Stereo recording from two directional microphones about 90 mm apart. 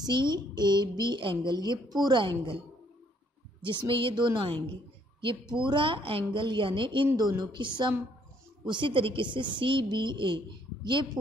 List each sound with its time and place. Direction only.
0.0 s a woman's voice: 55° right (ahead or behind)
3.6 s a woman's voice: 70° right (ahead or behind)
7.2 s a woman's voice: 50° right (ahead or behind)